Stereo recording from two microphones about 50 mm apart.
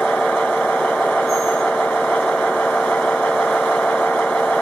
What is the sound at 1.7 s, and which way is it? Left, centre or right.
Vehicle, left.